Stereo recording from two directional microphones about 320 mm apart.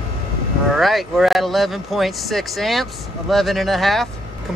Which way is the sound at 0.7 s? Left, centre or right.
Centre.